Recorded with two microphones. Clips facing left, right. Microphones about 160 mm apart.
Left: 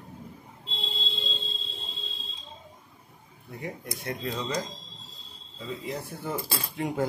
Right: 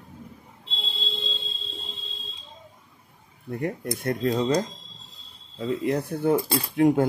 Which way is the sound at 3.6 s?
55° right (ahead or behind).